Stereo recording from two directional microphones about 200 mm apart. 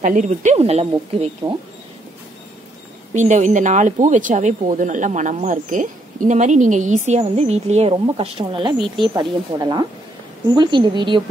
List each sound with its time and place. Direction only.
0.0 s speech: 40° right (ahead or behind)
3.2 s speech: 35° right (ahead or behind)